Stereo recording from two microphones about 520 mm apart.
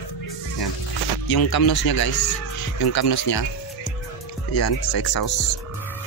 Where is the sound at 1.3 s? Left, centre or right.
Left.